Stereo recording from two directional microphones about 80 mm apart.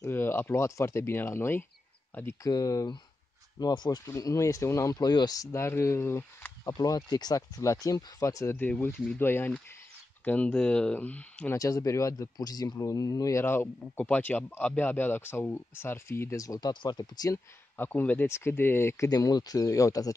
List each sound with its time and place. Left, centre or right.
0.1 s speech: left
2.4 s speech: left
3.5 s speech: left
4.0 s speech: left
5.6 s speech: left
6.7 s speech: left
8.5 s a man's voice: left
10.2 s speech: centre
11.5 s speech: left
13.4 s a man's voice: left
16.8 s speech: left
17.7 s a man's voice: left
19.0 s speech: left